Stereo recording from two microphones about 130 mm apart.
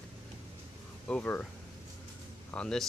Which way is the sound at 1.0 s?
10° left (ahead or behind).